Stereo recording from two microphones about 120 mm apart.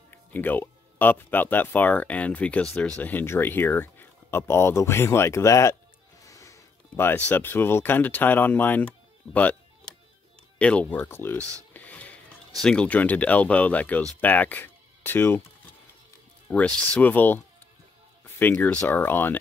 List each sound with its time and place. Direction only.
0.1 s speech: 15° left (ahead or behind)
11.7 s a sound: 10° left (ahead or behind)
12.6 s speech: 10° left (ahead or behind)